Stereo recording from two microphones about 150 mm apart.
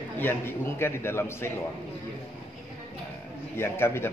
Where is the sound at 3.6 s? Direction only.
15° left (ahead or behind).